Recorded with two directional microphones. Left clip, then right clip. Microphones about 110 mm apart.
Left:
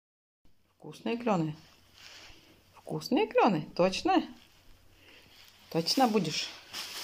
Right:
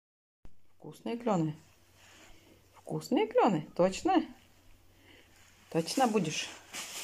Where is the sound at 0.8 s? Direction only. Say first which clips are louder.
Left 2 dB; 5° right (ahead or behind).